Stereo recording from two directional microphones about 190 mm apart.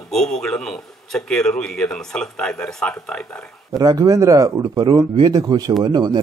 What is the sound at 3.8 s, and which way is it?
A man's voice, 20° right (ahead or behind).